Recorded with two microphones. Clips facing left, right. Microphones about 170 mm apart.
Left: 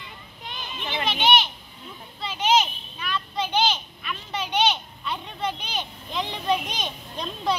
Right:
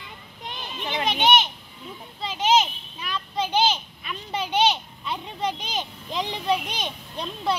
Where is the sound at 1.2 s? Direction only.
50° right (ahead or behind).